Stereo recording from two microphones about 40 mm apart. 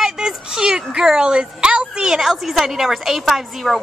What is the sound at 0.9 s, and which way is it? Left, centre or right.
A woman's voice, centre.